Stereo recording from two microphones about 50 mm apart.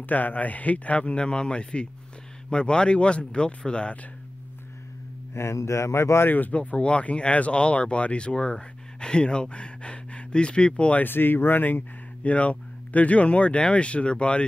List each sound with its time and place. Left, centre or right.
0.0 s speech: left
5.3 s speech: left
6.3 s speech: left
11.0 s speech: left
12.2 s speech: left